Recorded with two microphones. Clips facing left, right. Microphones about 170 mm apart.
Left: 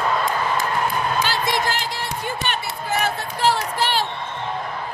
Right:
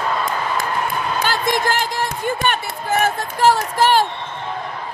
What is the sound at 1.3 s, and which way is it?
Speech, 50° right (ahead or behind).